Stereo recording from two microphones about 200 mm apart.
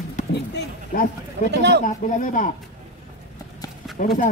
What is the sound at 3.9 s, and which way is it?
Speech, 40° left (ahead or behind).